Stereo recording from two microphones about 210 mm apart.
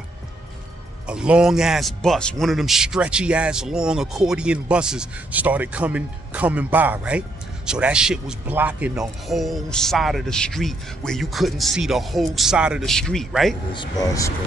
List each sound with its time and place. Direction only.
1.0 s a man's voice: 5° right (ahead or behind)
13.7 s speech: 15° left (ahead or behind)